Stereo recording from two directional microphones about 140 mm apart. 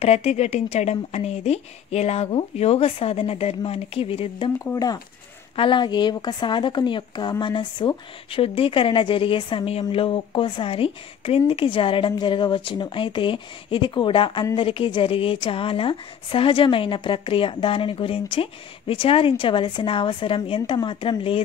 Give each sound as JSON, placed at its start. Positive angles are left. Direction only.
{"t": 0.0, "sound": "speech", "side_deg": 50}
{"t": 4.7, "sound": "a woman's voice", "side_deg": 25}